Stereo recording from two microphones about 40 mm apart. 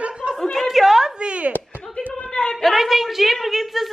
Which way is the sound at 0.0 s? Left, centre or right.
Right.